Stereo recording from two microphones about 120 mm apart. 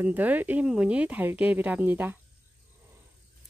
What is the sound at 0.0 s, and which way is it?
Speech, 15° right (ahead or behind).